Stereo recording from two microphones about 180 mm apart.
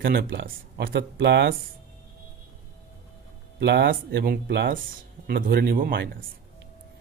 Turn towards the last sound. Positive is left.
turn(degrees=-60)  # may be behind; listen again after turning